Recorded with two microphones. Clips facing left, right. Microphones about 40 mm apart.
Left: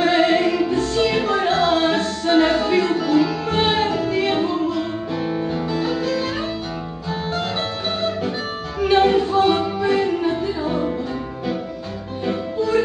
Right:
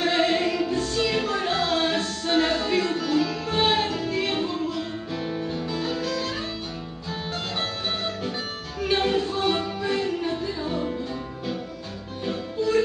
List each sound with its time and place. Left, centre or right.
0.0 s music: centre
8.8 s music: centre